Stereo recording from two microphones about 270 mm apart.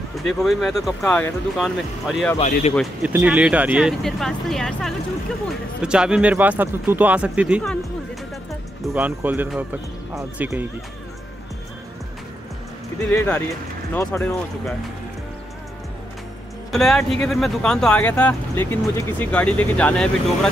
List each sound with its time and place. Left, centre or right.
0.2 s speech: centre
2.3 s speech: left
2.7 s speech: centre
8.9 s speech: centre
13.1 s speech: centre
16.7 s speech: centre